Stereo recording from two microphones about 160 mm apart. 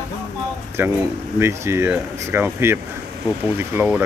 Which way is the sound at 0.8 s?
15° right (ahead or behind).